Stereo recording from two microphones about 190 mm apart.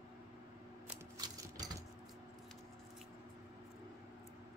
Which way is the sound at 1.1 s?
20° right (ahead or behind).